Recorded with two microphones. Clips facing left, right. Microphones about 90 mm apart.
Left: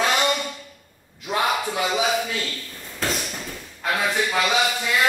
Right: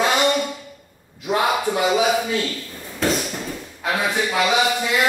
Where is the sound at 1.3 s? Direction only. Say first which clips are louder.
Right 3 dB; 15° right (ahead or behind).